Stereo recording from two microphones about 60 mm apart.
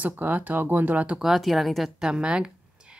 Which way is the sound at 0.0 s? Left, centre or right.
Right.